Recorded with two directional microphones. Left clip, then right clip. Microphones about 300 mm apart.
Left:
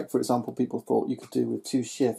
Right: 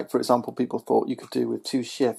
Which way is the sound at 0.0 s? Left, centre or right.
Centre.